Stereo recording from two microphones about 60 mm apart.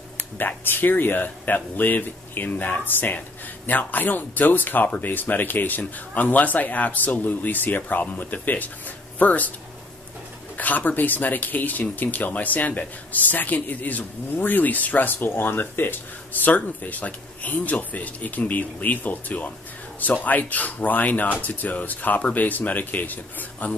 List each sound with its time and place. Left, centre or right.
0.4 s speech: left
10.6 s speech: left